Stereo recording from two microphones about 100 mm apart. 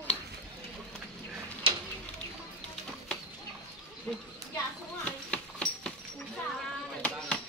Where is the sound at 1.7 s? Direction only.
60° right (ahead or behind).